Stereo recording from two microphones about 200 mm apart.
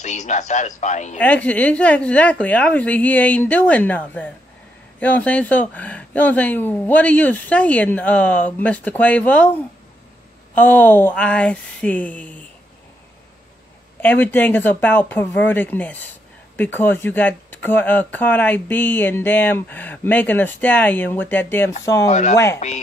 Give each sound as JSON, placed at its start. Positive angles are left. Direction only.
{"t": 0.0, "sound": "speech", "side_deg": 35}
{"t": 1.1, "sound": "speech", "side_deg": 5}
{"t": 10.5, "sound": "speech", "side_deg": 10}
{"t": 14.0, "sound": "speech", "side_deg": 10}
{"t": 22.1, "sound": "speech", "side_deg": 35}